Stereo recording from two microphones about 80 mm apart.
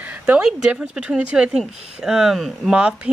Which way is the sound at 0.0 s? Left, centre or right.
Centre.